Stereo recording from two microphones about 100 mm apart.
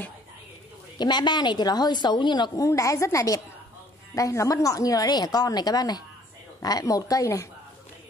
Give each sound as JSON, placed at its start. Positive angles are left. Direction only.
{"t": 0.9, "sound": "a woman's voice", "side_deg": 45}
{"t": 2.6, "sound": "a woman's voice", "side_deg": 30}